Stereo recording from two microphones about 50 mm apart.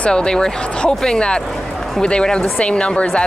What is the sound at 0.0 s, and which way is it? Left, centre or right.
A woman's voice, centre.